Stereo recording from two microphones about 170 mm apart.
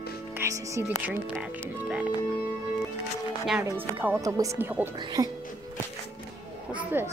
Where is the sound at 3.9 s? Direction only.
15° right (ahead or behind).